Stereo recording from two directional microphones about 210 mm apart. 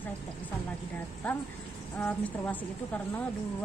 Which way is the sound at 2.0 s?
5° left (ahead or behind).